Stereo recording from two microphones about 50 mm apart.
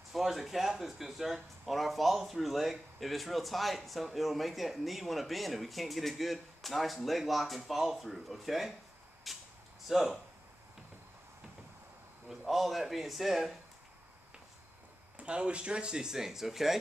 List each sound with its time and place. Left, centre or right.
0.1 s speech: centre
9.3 s a sound: centre
9.8 s speech: centre
12.3 s speech: centre
15.1 s speech: right; by 16.7 s centre